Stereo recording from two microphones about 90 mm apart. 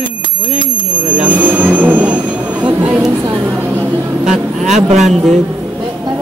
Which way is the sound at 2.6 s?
15° right (ahead or behind).